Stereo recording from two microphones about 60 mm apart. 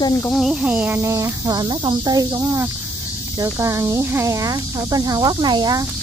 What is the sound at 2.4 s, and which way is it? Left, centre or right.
Speech, right.